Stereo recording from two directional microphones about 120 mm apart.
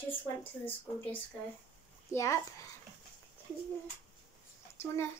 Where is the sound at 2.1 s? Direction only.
25° left (ahead or behind).